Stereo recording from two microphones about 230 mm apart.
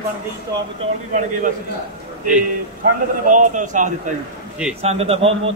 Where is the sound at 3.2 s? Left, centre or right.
Right.